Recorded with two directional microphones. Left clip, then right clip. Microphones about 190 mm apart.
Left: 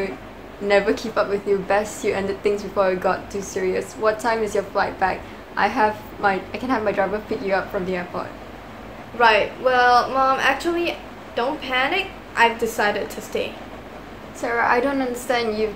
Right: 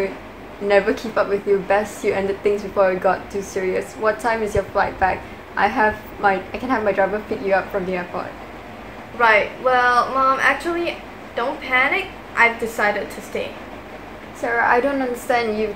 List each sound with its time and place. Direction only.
0.7 s a woman's voice: 10° right (ahead or behind)
9.2 s a woman's voice: 20° left (ahead or behind)
14.4 s a woman's voice: 10° right (ahead or behind)